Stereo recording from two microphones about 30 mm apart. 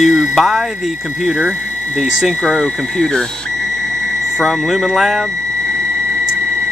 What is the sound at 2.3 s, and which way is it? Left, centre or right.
Speech, centre.